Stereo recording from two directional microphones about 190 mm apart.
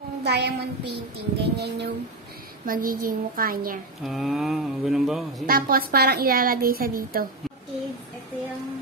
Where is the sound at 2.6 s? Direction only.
50° right (ahead or behind).